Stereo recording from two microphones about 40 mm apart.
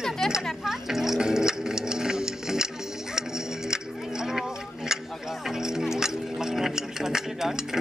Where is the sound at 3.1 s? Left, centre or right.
Centre.